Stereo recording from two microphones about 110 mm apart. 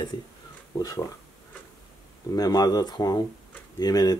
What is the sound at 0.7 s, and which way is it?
Speech, 35° left (ahead or behind).